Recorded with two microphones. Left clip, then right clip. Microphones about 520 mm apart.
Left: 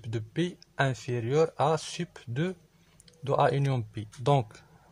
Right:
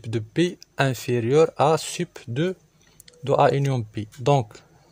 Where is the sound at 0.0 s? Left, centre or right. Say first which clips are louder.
Right 9 dB; left.